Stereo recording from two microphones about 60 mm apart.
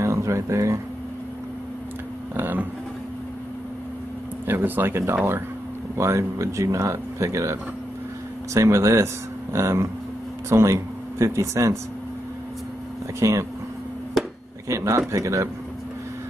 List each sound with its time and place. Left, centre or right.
0.0 s a sound: right
2.3 s vehicle: right
4.5 s speech: right
5.9 s speech: right
8.5 s speech: right
13.2 s speech: right
14.7 s speech: right